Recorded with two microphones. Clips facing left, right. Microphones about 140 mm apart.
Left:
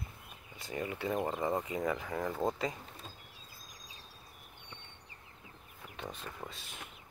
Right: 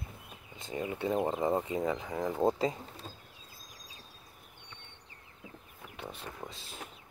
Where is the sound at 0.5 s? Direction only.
20° right (ahead or behind).